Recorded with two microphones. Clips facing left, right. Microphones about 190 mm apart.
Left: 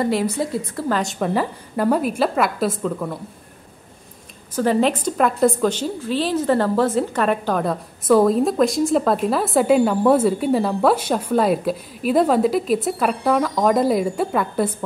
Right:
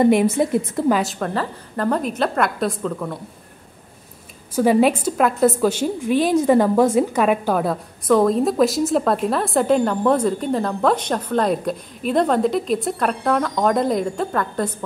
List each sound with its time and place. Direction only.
0.0 s a woman's voice: 20° right (ahead or behind)
1.2 s a woman's voice: 10° left (ahead or behind)
4.6 s a woman's voice: 10° right (ahead or behind); by 14.7 s 10° left (ahead or behind)